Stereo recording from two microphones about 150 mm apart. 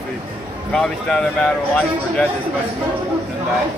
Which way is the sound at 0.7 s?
5° left (ahead or behind).